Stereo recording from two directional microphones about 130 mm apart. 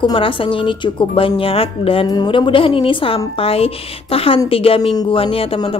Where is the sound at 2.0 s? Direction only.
35° left (ahead or behind).